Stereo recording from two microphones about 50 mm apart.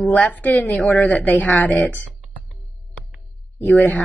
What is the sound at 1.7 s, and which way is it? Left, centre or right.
Computer keyboard, centre.